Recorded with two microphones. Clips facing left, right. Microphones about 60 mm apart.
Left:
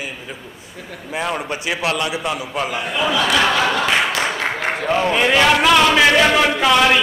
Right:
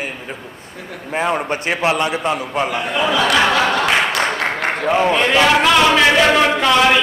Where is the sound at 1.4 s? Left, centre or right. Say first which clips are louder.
Right 3 dB; right.